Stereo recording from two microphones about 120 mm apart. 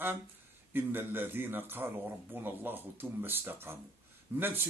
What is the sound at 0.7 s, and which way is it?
Speech, 15° right (ahead or behind).